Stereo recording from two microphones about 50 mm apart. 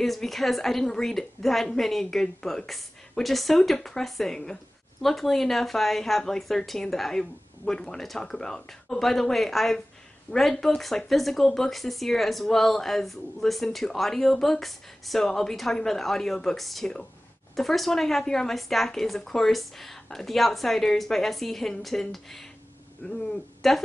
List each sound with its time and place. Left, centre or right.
0.0 s speech: centre
23.6 s speech: centre